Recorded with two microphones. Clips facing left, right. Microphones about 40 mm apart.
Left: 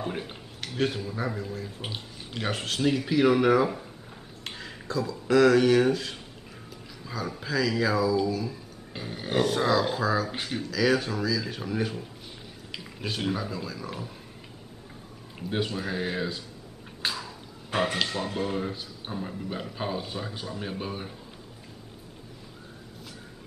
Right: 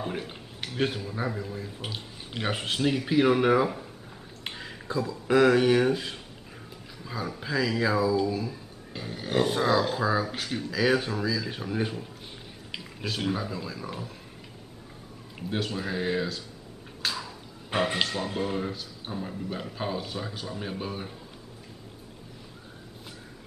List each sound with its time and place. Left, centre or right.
0.0 s speech: centre
4.5 s a sound: centre
5.3 s speech: centre
7.2 s speech: centre
8.9 s a sound: centre
9.4 s speech: centre
10.3 s a sound: centre
10.7 s speech: centre
15.5 s speech: centre
17.0 s a sound: centre
17.7 s speech: right
18.0 s speech: centre